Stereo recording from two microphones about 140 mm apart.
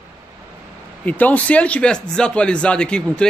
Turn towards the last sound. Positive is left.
turn(degrees=5)  # may be behind; listen again after turning